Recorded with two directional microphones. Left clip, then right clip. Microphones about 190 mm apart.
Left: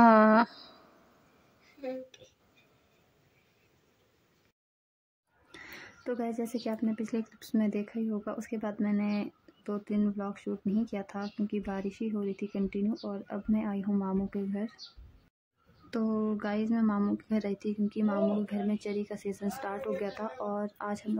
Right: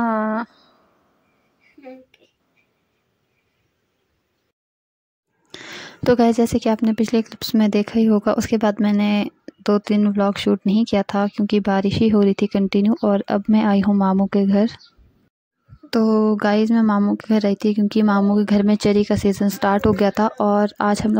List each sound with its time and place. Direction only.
0.0 s a sound: 5° right (ahead or behind)
5.5 s speech: 40° right (ahead or behind)
15.9 s speech: 45° right (ahead or behind)